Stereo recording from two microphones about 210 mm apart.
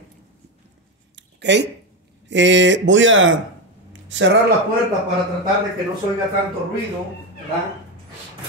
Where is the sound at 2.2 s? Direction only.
60° right (ahead or behind).